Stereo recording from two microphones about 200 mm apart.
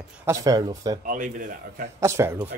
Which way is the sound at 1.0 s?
40° right (ahead or behind).